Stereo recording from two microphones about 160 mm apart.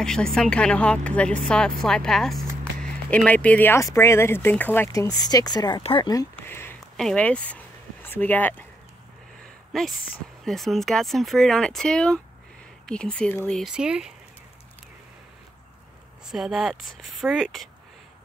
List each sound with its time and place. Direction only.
0.0 s speech: 5° left (ahead or behind); by 5.8 s 25° left (ahead or behind)
5.8 s speech: 35° left (ahead or behind)
6.3 s a sound: 15° left (ahead or behind)
7.0 s speech: 5° left (ahead or behind)
9.7 s speech: centre (ahead or behind)
16.3 s speech: centre (ahead or behind)